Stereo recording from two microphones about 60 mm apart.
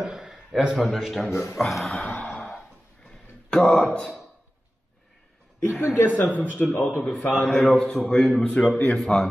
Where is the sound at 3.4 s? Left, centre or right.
Centre.